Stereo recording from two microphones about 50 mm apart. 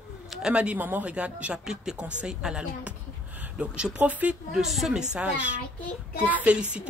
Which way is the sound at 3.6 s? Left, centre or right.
Right.